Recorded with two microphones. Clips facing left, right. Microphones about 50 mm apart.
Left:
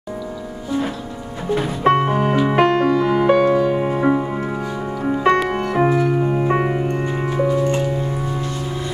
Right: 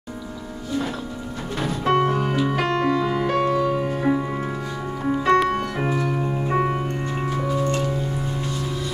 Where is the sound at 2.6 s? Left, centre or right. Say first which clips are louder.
Left 7 dB; left.